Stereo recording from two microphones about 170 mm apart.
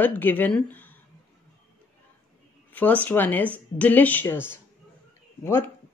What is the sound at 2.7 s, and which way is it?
Speech, 10° left (ahead or behind).